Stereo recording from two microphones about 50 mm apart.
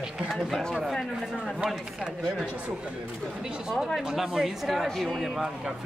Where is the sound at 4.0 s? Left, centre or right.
Centre.